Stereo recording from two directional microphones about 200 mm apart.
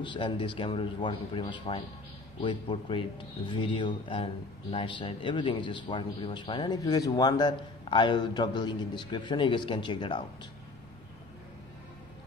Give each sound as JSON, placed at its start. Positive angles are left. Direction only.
{"t": 0.0, "sound": "speech", "side_deg": 25}